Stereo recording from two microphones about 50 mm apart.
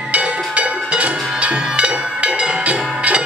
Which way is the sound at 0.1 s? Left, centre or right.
Right.